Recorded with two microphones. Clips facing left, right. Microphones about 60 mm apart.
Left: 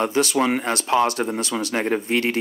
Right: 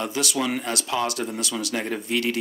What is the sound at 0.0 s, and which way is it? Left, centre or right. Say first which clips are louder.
Speech: left 6 dB; left.